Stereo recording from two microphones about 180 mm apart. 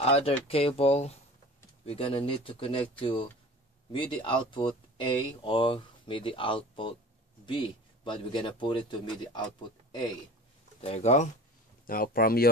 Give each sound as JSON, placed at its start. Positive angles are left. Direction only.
{"t": 0.0, "sound": "speech", "side_deg": 35}
{"t": 10.8, "sound": "speech", "side_deg": 35}
{"t": 11.8, "sound": "speech", "side_deg": 50}